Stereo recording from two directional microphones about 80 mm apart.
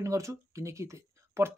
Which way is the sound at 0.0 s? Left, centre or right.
Right.